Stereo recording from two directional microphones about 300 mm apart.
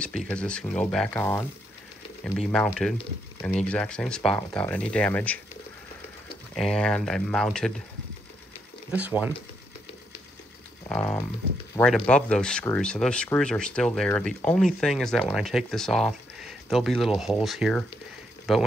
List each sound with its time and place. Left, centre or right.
0.0 s speech: centre
6.5 s speech: centre
8.9 s speech: centre
10.9 s speech: centre